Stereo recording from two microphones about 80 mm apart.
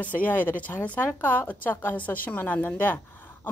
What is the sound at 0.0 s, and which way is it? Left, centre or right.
A woman's voice, centre.